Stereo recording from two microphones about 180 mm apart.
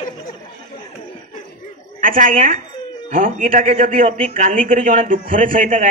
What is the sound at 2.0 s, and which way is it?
A man's voice, 50° right (ahead or behind).